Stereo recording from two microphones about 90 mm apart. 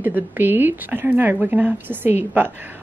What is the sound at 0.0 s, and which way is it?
Speech, 20° right (ahead or behind).